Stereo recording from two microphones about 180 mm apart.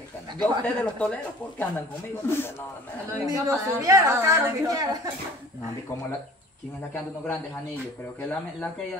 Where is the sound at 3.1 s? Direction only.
20° right (ahead or behind).